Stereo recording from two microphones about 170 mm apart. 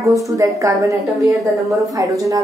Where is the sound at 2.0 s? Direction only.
20° right (ahead or behind).